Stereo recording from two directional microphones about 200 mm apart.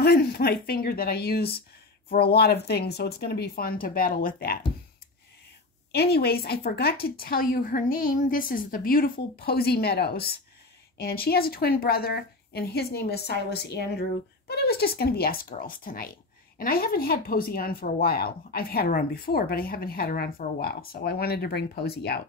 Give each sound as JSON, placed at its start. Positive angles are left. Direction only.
{"t": 0.0, "sound": "speech", "side_deg": 50}
{"t": 5.9, "sound": "speech", "side_deg": 50}